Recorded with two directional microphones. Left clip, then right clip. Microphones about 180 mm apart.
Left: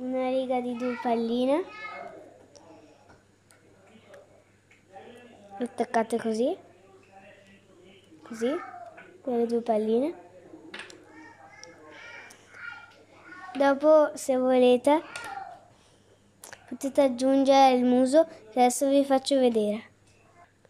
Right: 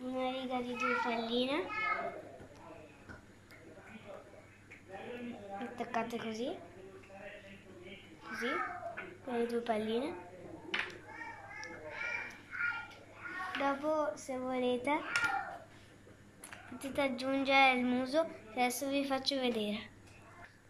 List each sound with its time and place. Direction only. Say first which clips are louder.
0.1 s child singing: left 10 dB; 30° left (ahead or behind)
0.7 s a child's voice: left 5 dB; 40° left (ahead or behind)
5.6 s a sound: left 11 dB; 45° left (ahead or behind)
8.3 s speech: left 6 dB; 40° left (ahead or behind)
13.6 s a sound: left 15 dB; 55° left (ahead or behind)
16.4 s speech: left 10 dB; 35° left (ahead or behind)